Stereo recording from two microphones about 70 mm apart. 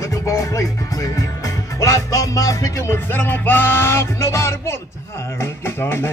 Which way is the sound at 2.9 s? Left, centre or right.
Left.